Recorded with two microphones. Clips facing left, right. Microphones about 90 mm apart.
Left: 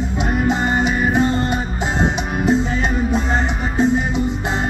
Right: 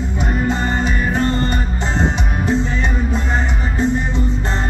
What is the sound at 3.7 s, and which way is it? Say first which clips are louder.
Music: left 2 dB; 15° left (ahead or behind).